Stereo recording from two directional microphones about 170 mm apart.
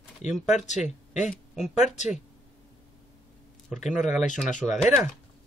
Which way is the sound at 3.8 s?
45° left (ahead or behind).